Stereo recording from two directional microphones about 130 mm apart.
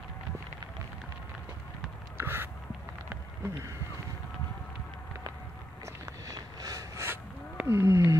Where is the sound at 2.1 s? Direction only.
15° right (ahead or behind).